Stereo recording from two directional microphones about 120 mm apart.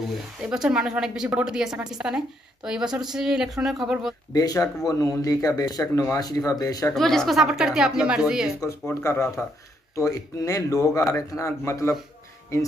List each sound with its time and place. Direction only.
0.4 s a woman's voice: 5° right (ahead or behind)
4.3 s speech: 30° left (ahead or behind)
6.9 s a woman's voice: 5° left (ahead or behind)
8.8 s speech: 20° left (ahead or behind)